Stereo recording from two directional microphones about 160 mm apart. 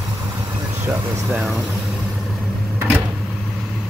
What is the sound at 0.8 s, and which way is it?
Vehicle, 20° right (ahead or behind).